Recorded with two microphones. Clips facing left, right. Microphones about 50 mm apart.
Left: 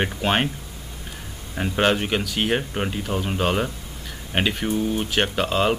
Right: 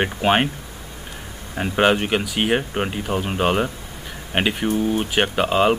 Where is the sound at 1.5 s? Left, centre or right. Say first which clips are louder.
Right 3 dB; centre.